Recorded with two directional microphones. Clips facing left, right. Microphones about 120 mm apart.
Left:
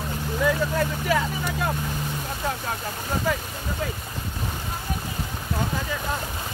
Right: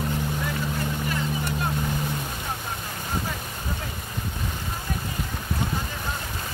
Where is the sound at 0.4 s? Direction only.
90° left.